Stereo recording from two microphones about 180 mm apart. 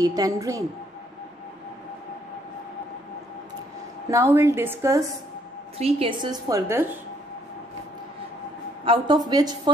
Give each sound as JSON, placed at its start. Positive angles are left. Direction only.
{"t": 0.0, "sound": "a woman's voice", "side_deg": -20}
{"t": 4.1, "sound": "a woman's voice", "side_deg": -15}
{"t": 5.8, "sound": "a woman's voice", "side_deg": -30}
{"t": 8.8, "sound": "a woman's voice", "side_deg": -25}